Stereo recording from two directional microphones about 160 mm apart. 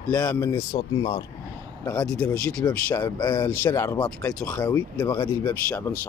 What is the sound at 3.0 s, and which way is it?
Speech, 25° left (ahead or behind).